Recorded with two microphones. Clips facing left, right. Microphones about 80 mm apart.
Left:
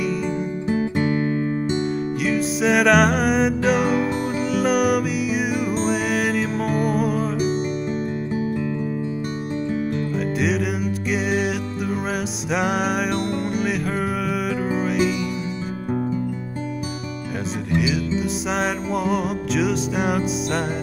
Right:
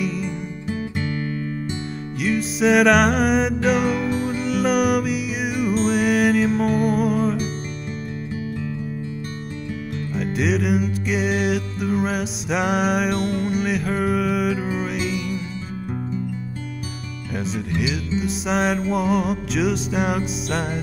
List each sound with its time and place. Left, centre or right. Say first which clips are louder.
0.7 s music: left 5 dB; left
2.2 s music: right 2 dB; centre
10.1 s music: right 3 dB; centre
17.6 s music: left 3 dB; centre